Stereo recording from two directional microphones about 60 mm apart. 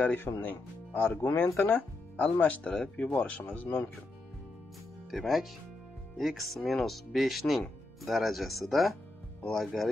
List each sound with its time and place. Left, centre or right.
0.0 s speech: left
2.7 s speech: centre
3.2 s speech: left
5.1 s speech: centre